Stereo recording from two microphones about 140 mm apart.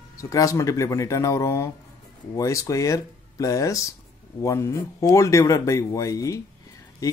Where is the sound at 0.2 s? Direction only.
25° left (ahead or behind).